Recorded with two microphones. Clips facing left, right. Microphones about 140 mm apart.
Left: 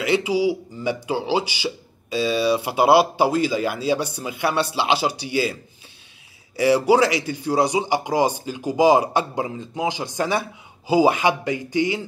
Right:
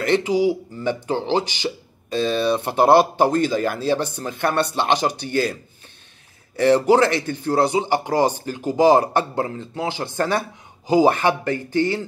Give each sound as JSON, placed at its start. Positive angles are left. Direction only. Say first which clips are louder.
{"t": 0.0, "sound": "speech", "louder": "right 2 dB", "side_deg": 10}
{"t": 6.5, "sound": "speech", "louder": "right 1 dB", "side_deg": 10}